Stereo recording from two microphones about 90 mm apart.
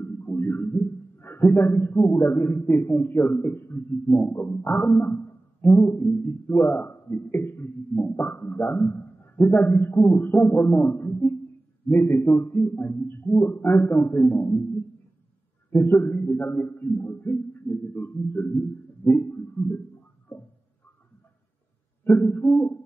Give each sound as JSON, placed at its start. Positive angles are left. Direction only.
{"t": 0.0, "sound": "a man's voice", "side_deg": 20}
{"t": 15.7, "sound": "a man's voice", "side_deg": 25}
{"t": 22.0, "sound": "a man's voice", "side_deg": 20}